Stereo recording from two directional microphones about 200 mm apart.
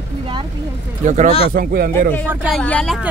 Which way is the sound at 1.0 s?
35° right (ahead or behind).